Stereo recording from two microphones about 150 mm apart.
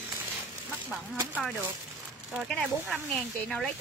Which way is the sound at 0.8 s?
10° right (ahead or behind).